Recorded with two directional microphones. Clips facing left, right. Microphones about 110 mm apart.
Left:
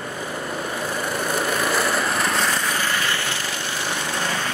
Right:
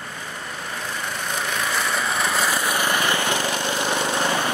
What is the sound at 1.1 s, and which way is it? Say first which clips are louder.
Vehicle: left 4 dB; 5° left (ahead or behind).